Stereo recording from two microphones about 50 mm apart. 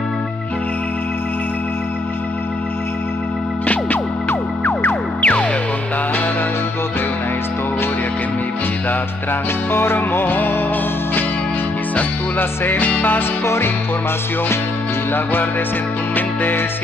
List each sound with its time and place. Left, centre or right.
3.6 s music: left
5.2 s music: left
9.7 s music: left
12.4 s music: left
16.2 s music: left